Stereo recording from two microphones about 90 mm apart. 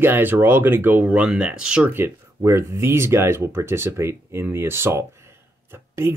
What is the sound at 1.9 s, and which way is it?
Speech, 30° right (ahead or behind).